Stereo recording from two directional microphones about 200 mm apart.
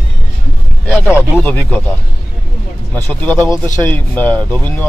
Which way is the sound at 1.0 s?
5° right (ahead or behind).